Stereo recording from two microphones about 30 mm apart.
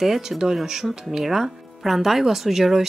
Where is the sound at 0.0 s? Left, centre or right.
Centre.